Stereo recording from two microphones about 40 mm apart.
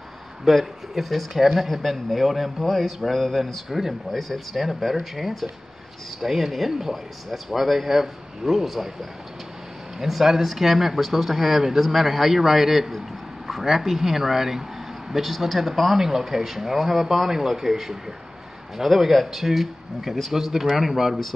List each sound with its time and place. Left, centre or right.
0.5 s speech: centre
10.0 s speech: centre